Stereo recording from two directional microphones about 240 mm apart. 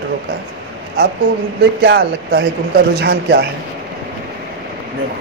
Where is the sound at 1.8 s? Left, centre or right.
Right.